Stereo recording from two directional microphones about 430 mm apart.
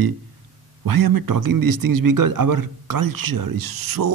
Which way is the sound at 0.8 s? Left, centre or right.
Right.